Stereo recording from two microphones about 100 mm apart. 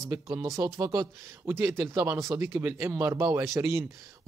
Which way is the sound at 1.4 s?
25° right (ahead or behind).